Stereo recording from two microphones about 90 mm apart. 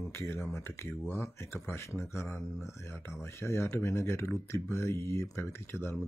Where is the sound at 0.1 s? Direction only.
30° left (ahead or behind).